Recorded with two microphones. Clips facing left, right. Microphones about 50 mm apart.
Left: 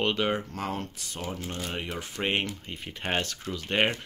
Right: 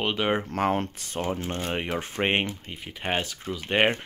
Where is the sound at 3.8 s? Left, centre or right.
Right.